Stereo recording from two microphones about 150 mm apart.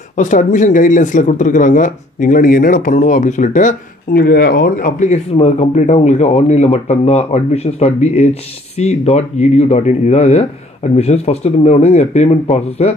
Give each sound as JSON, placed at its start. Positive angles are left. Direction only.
{"t": 0.1, "sound": "speech", "side_deg": 60}